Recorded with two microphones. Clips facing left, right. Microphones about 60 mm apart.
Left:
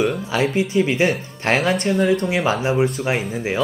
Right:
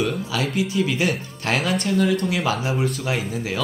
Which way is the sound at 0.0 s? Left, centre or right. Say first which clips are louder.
Left 4 dB; left.